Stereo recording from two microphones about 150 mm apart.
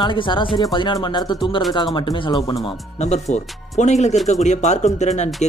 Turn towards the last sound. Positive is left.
turn(degrees=50)  # may be behind; listen again after turning